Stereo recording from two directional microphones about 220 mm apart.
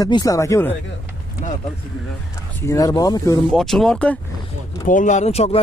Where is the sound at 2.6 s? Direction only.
15° left (ahead or behind).